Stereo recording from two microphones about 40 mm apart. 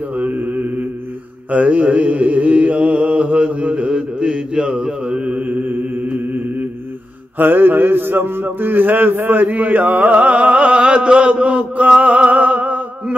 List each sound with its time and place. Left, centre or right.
0.4 s mantra: right
1.5 s mantra: right
3.9 s mantra: centre
5.3 s mantra: right
8.5 s chant: right
11.5 s music: right